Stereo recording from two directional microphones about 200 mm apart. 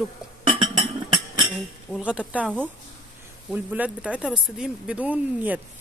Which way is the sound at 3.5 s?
10° right (ahead or behind).